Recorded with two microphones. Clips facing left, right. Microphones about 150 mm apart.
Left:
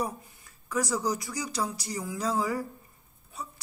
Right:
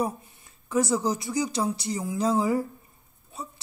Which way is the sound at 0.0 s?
25° right (ahead or behind).